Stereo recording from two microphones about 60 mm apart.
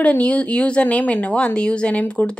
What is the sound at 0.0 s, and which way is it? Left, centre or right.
A woman's voice, left.